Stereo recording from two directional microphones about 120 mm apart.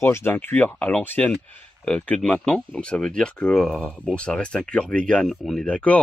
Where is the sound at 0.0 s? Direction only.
20° left (ahead or behind).